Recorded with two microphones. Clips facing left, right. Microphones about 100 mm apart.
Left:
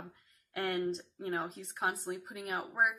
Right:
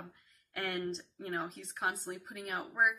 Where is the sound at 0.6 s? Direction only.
Centre (ahead or behind).